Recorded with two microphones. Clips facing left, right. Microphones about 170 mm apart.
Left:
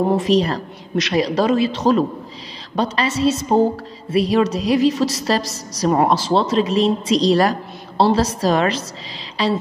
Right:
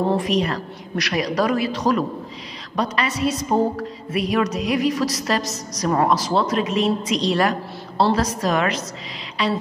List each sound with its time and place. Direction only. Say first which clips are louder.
0.2 s a woman's voice: left 4 dB; 30° left (ahead or behind)